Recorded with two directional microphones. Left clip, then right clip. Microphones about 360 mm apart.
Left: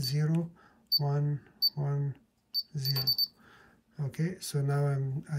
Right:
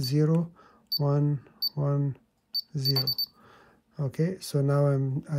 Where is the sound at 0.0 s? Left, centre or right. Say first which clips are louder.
Right 8 dB; centre.